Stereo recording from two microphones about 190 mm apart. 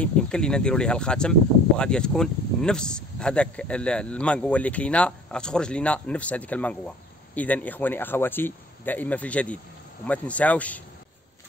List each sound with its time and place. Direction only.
0.0 s speech: 5° left (ahead or behind)